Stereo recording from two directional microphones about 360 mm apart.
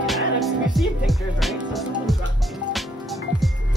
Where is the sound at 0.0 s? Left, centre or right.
Centre.